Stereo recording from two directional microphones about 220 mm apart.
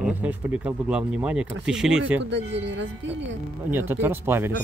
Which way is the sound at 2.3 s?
55° right (ahead or behind).